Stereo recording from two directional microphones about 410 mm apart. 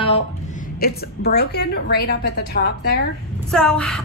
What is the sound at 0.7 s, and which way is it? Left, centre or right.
A woman's voice, left.